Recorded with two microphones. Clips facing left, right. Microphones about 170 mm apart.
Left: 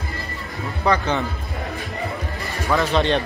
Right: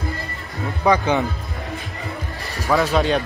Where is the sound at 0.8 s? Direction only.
15° right (ahead or behind).